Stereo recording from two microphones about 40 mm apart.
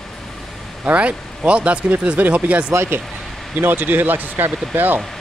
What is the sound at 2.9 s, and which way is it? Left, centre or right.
Speech, right.